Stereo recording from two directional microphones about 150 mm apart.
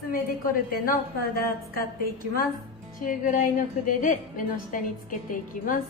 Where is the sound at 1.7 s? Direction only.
80° left.